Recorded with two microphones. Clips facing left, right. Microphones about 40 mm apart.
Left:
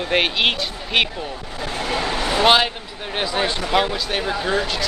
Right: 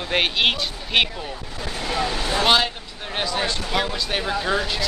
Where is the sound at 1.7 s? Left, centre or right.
Left.